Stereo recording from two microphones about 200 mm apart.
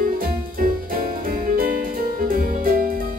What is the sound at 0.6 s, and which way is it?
Music, 45° right (ahead or behind).